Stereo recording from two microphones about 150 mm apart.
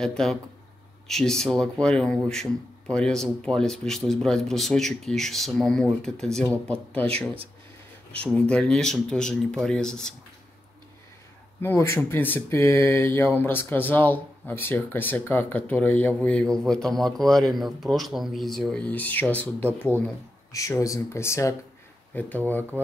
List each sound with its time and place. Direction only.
0.0 s speech: 5° left (ahead or behind)
7.1 s speech: 40° right (ahead or behind)
8.2 s speech: 5° left (ahead or behind)
11.6 s speech: 15° left (ahead or behind)
20.5 s speech: 20° left (ahead or behind)